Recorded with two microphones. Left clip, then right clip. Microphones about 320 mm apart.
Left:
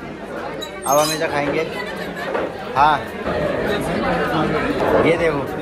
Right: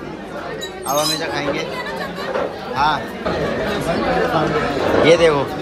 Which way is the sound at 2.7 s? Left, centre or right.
Centre.